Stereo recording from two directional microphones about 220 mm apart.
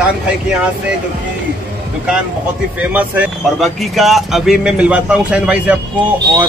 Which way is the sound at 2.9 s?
5° right (ahead or behind).